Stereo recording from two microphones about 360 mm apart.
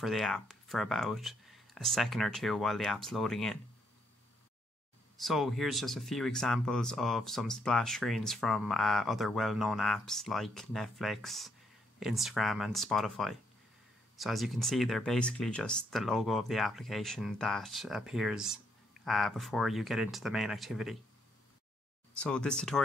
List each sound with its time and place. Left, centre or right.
0.0 s speech: centre
5.1 s speech: centre
22.2 s speech: centre